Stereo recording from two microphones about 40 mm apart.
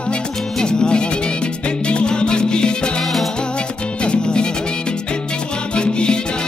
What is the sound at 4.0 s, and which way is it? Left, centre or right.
Music, left.